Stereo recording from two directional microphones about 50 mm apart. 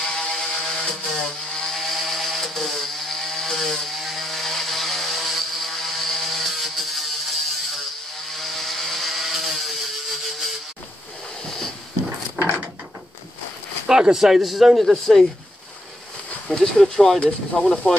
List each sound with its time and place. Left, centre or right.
0.0 s chainsaw: centre
8.3 s vehicle: centre
13.8 s speech: centre
16.4 s speech: centre
17.2 s speech: left